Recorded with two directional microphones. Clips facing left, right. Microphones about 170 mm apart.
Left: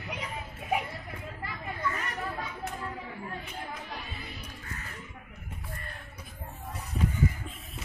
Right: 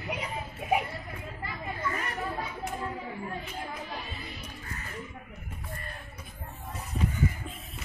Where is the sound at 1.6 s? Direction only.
20° right (ahead or behind).